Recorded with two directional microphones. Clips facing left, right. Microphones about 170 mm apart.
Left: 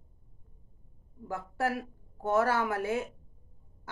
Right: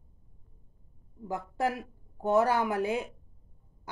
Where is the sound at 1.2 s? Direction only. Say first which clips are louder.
Right 1 dB; 15° right (ahead or behind).